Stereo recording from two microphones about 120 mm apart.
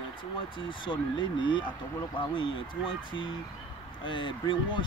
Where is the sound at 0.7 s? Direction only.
40° left (ahead or behind).